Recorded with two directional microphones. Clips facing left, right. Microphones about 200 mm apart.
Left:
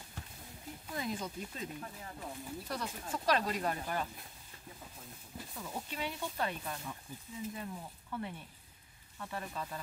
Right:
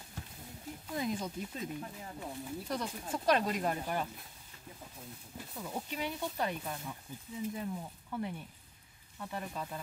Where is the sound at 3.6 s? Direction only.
15° right (ahead or behind).